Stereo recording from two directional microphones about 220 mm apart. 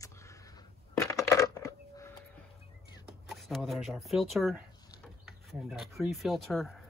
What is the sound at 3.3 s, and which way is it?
Speech, centre (ahead or behind).